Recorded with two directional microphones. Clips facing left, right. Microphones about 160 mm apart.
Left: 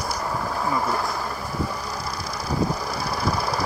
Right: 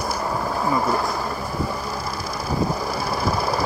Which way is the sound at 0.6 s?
20° right (ahead or behind).